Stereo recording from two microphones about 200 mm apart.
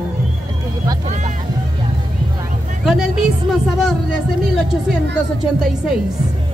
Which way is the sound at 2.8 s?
Centre (ahead or behind).